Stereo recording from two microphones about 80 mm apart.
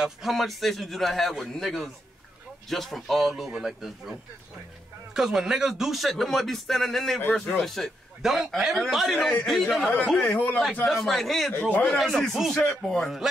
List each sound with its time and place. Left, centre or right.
0.0 s speech: centre
10.3 s a man's voice: left
10.9 s speech: centre
11.5 s a man's voice: left
11.8 s speech: centre